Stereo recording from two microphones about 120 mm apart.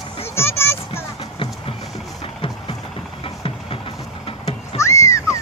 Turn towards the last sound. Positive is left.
turn(degrees=25)  # may be behind; listen again after turning